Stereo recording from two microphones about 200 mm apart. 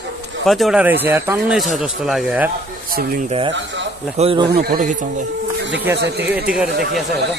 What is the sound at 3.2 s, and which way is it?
Speech, 30° right (ahead or behind).